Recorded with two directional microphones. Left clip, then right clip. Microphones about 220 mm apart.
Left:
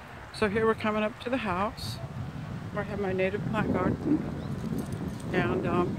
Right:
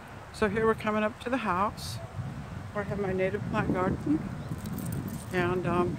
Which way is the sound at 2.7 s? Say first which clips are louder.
Even; 5° left (ahead or behind).